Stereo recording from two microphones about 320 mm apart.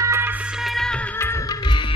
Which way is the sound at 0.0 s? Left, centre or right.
Centre.